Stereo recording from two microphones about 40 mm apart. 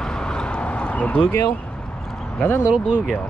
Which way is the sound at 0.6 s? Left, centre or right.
Left.